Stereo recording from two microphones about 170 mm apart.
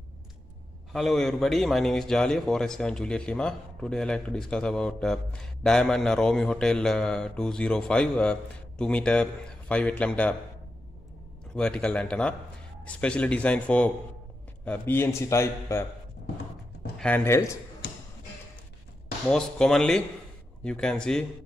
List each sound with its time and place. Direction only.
0.9 s a man's voice: centre (ahead or behind)
11.5 s a man's voice: 5° left (ahead or behind)
17.0 s a man's voice: 10° left (ahead or behind)
19.2 s a man's voice: centre (ahead or behind)